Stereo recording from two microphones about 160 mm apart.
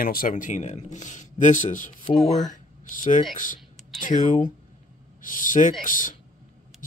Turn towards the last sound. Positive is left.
turn(degrees=55)  # may be behind; listen again after turning